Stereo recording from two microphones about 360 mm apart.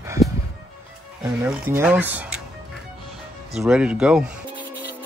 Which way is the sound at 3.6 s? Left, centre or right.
Centre.